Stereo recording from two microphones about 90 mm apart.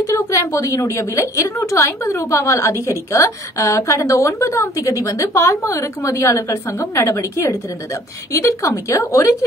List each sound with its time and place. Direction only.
0.0 s a woman's voice: 35° left (ahead or behind)